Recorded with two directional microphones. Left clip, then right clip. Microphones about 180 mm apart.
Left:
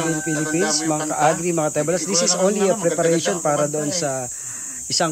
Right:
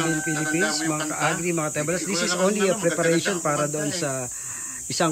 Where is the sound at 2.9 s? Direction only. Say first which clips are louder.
Left 3 dB; 55° left (ahead or behind).